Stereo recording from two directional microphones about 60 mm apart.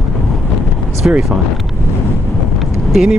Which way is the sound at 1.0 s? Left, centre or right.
Centre.